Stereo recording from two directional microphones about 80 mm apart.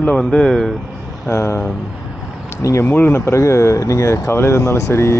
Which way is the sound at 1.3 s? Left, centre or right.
Left.